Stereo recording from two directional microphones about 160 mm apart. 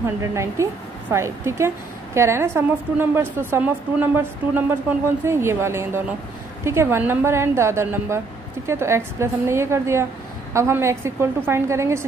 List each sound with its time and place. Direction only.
0.0 s a woman's voice: 15° right (ahead or behind)